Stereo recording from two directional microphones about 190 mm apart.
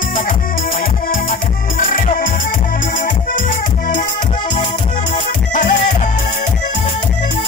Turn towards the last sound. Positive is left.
turn(degrees=40)  # may be behind; listen again after turning